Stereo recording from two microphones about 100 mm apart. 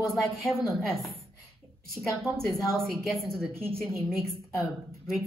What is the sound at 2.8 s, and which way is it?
Speech, centre (ahead or behind).